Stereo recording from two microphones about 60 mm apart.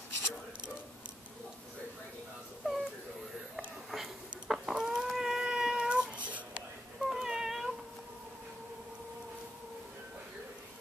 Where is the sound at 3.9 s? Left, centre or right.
Centre.